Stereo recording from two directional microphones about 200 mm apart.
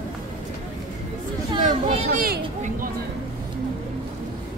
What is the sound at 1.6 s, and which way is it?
Children playing, 40° right (ahead or behind).